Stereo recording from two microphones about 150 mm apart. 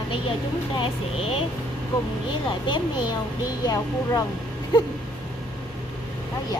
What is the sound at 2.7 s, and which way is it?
Speech, 30° left (ahead or behind).